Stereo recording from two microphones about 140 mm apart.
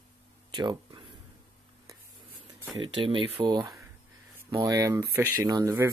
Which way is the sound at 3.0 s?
35° right (ahead or behind).